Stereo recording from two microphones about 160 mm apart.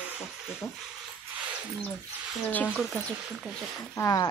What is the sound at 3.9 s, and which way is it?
Speech, 20° left (ahead or behind).